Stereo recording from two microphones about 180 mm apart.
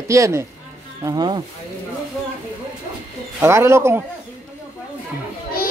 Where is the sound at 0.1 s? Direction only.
15° right (ahead or behind).